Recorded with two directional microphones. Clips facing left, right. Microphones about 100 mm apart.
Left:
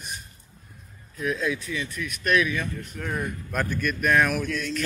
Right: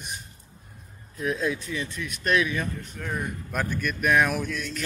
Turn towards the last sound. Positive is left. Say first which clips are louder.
# left 2 dB
turn(degrees=-10)  # may be behind; listen again after turning